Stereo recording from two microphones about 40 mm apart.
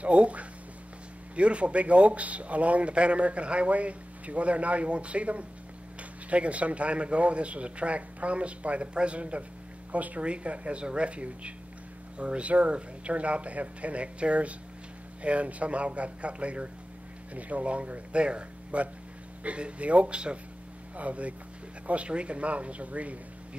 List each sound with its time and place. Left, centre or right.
0.0 s speech: right